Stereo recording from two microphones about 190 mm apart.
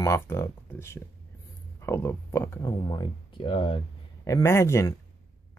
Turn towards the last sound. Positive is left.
turn(degrees=15)  # may be behind; listen again after turning